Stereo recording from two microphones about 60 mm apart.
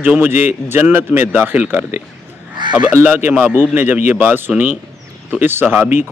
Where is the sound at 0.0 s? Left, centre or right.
Right.